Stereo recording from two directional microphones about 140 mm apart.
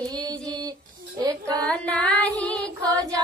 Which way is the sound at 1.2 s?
30° right (ahead or behind).